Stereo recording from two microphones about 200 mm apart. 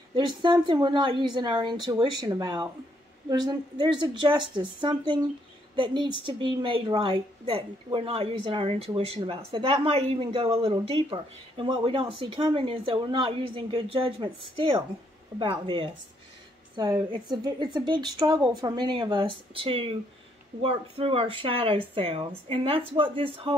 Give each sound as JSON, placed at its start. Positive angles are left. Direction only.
{"t": 0.1, "sound": "a woman's voice", "side_deg": -25}